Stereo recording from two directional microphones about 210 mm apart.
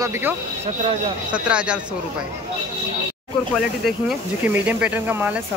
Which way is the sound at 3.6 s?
Centre (ahead or behind).